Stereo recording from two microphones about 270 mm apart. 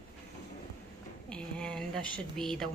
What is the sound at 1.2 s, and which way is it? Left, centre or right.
A woman's voice, centre.